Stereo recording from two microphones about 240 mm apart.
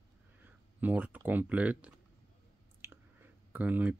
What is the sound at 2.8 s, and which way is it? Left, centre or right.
Clicking, centre.